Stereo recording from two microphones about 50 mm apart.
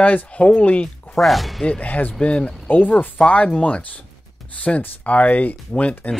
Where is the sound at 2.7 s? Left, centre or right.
Left.